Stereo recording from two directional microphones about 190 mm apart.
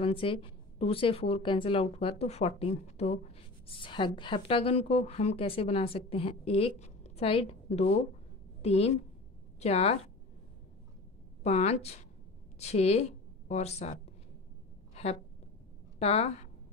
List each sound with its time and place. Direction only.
0.0 s a woman's voice: 30° left (ahead or behind)
11.4 s a woman's voice: 35° left (ahead or behind)
16.0 s a woman's voice: 35° left (ahead or behind)